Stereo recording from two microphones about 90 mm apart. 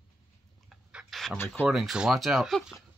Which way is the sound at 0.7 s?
5° right (ahead or behind).